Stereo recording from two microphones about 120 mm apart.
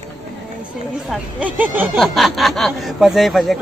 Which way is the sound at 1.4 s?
15° right (ahead or behind).